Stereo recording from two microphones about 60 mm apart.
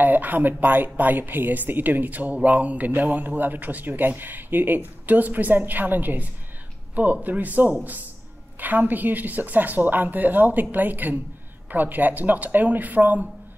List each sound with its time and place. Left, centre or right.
0.0 s a woman's voice: right